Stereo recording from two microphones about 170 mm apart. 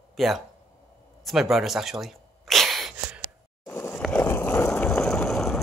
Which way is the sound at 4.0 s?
10° left (ahead or behind).